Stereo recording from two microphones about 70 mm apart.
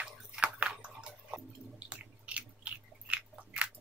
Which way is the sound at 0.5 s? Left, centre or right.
Centre.